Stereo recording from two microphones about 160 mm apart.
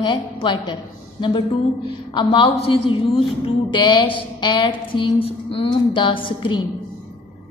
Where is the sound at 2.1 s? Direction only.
30° left (ahead or behind).